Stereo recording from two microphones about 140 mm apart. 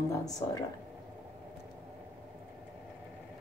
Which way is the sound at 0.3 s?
25° left (ahead or behind).